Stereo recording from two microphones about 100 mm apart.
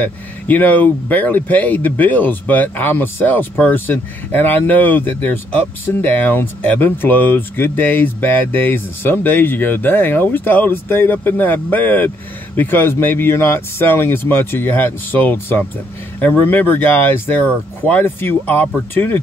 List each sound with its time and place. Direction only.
0.0 s speech: 15° left (ahead or behind)